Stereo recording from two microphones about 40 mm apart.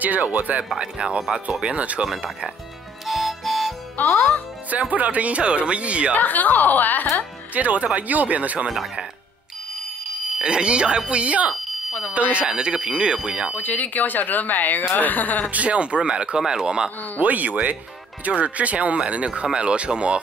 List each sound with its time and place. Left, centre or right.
0.0 s speech: right
0.7 s speech: right
3.1 s music: centre
4.0 s speech: left
4.6 s speech: right
6.1 s speech: left
7.5 s speech: right
10.4 s speech: right
13.6 s speech: left
15.5 s speech: right
17.2 s speech: right